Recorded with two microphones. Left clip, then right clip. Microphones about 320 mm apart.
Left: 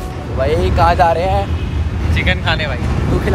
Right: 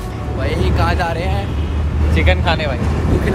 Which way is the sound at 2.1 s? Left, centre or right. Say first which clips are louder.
Even; centre.